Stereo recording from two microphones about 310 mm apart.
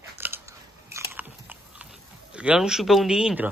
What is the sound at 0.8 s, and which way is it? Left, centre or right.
Biting, centre.